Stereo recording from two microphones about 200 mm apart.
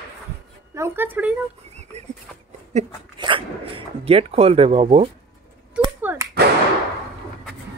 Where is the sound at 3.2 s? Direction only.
25° right (ahead or behind).